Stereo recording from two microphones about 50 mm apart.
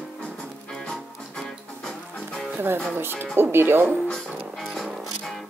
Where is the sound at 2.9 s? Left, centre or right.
Right.